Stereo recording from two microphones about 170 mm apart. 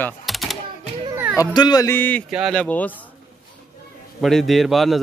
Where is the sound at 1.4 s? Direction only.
25° left (ahead or behind); by 2.9 s 10° left (ahead or behind).